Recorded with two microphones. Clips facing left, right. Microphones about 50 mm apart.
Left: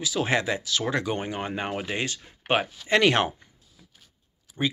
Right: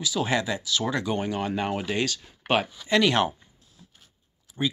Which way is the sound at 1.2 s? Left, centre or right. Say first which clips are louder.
Right 3 dB; left.